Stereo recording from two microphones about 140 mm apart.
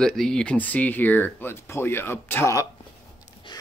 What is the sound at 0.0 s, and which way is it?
Speech, 5° left (ahead or behind).